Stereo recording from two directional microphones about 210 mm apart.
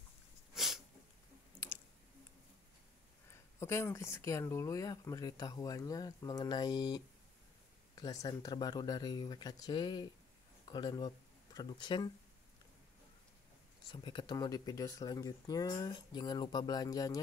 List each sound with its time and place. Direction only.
0.6 s sneeze: centre (ahead or behind)
3.3 s speech: 15° left (ahead or behind)
13.8 s speech: 20° left (ahead or behind)